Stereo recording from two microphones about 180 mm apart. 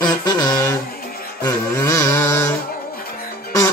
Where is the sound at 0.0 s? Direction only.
20° left (ahead or behind).